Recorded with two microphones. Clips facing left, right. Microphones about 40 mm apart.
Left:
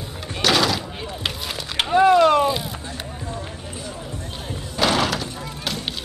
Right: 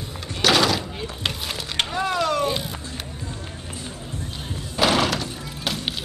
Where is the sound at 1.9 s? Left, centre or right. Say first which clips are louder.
Left 11 dB; left.